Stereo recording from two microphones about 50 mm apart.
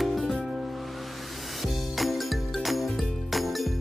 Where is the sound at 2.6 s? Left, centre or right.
Centre.